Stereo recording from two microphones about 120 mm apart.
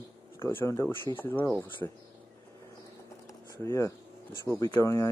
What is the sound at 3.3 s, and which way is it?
Pigeon, 25° left (ahead or behind).